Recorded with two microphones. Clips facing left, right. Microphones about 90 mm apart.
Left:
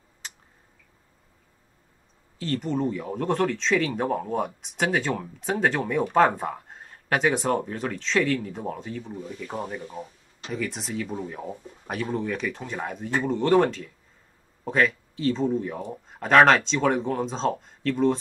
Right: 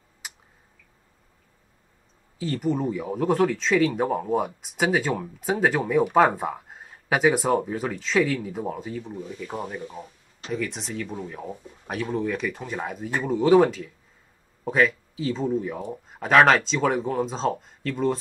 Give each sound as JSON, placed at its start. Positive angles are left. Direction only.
{"t": 2.3, "sound": "speech", "side_deg": -5}